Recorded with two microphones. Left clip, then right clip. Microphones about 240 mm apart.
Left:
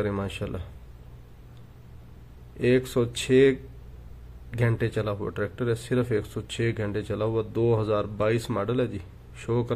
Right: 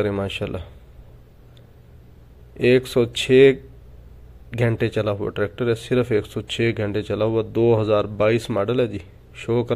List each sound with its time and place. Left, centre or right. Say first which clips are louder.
0.0 s speech: right 6 dB; centre
2.5 s speech: right 6 dB; centre